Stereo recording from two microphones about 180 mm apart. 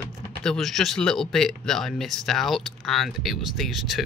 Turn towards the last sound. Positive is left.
turn(degrees=0)  # may be behind; listen again after turning